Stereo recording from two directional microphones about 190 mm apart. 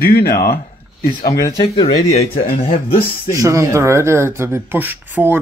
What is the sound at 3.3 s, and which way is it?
Speech, 15° right (ahead or behind).